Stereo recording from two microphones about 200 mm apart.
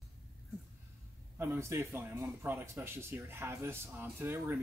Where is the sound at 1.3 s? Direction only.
10° right (ahead or behind).